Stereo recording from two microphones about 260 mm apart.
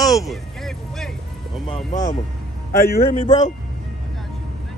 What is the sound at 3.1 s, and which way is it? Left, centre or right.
Speech, left.